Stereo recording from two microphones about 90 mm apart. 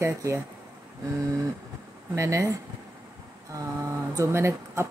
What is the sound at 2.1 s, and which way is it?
Speech, 35° right (ahead or behind).